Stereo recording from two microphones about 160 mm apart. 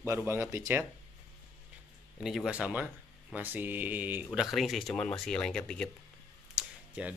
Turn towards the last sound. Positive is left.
turn(degrees=-10)  # may be behind; listen again after turning